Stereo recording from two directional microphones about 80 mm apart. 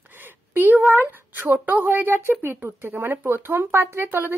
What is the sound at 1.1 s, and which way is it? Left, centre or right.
Speech, right.